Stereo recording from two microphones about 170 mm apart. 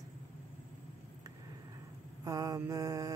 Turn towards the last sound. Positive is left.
turn(degrees=-20)  # may be behind; listen again after turning